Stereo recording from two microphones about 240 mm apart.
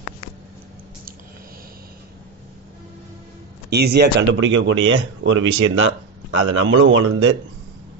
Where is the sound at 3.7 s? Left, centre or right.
Right.